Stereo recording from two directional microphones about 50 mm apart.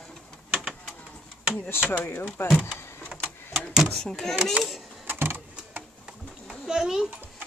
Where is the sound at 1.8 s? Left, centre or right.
Left.